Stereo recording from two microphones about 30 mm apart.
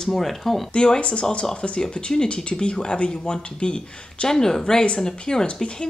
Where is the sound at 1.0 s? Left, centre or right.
Left.